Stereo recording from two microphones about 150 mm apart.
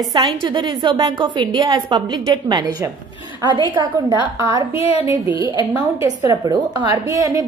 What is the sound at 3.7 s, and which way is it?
Speech, 30° right (ahead or behind).